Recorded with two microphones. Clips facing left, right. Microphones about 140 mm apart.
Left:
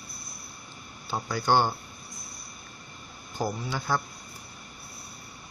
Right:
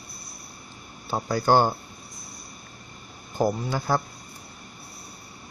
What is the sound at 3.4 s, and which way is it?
Speech, 45° right (ahead or behind).